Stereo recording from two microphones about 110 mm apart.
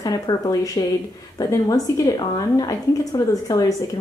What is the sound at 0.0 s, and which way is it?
A woman's voice, 35° left (ahead or behind).